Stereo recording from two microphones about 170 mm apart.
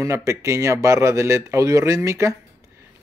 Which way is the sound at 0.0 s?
20° right (ahead or behind).